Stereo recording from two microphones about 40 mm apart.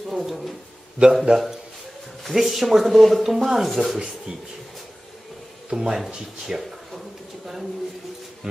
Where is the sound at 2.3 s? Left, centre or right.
Centre.